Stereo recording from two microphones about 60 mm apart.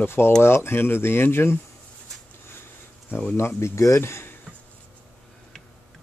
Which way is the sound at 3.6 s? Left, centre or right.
Left.